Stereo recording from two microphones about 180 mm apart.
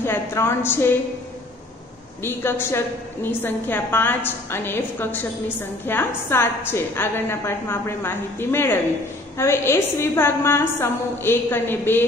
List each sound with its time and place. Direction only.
0.0 s a woman's voice: 15° left (ahead or behind)
2.2 s a woman's voice: 15° left (ahead or behind)